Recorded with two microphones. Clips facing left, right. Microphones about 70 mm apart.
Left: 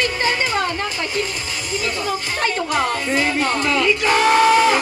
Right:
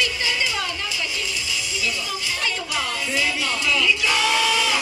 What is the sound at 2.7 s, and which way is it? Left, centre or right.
Music, left.